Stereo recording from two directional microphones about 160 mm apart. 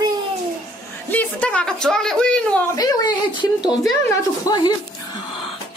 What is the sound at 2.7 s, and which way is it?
Speech, 25° left (ahead or behind).